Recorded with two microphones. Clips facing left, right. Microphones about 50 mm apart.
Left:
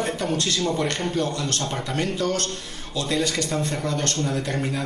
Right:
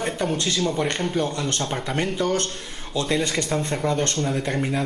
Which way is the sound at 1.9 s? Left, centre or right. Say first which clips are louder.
Right 1 dB; right.